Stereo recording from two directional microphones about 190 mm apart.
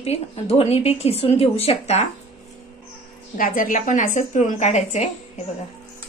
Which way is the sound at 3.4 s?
45° left (ahead or behind).